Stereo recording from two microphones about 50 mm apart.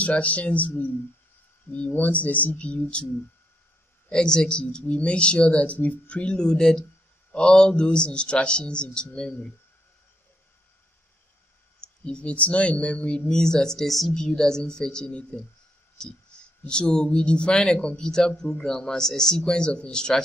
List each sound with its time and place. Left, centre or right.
0.0 s speech: left
4.1 s speech: centre
12.0 s speech: left
13.3 s speech: centre